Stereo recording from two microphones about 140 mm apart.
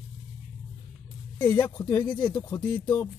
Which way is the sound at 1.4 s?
35° left (ahead or behind).